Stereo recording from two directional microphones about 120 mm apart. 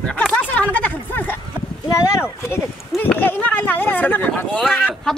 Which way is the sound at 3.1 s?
15° left (ahead or behind).